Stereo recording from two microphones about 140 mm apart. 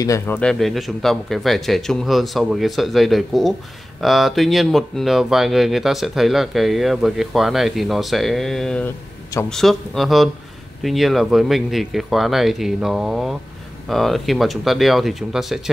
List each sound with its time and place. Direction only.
0.0 s speech: 20° left (ahead or behind)
0.4 s speech: 5° left (ahead or behind)